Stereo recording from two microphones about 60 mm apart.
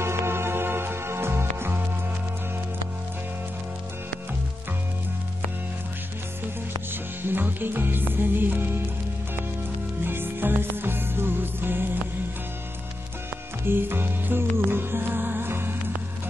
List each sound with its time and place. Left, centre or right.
0.0 s music: right
6.9 s music: right
10.0 s music: right
13.7 s music: right